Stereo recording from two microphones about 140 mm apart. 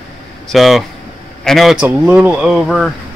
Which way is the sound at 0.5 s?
Centre (ahead or behind).